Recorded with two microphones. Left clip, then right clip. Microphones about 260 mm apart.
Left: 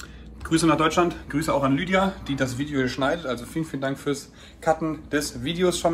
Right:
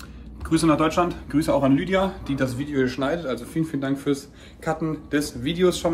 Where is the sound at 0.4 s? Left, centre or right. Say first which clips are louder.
Even; centre.